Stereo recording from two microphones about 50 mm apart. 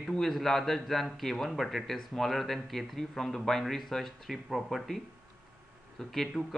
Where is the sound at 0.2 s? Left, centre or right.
Centre.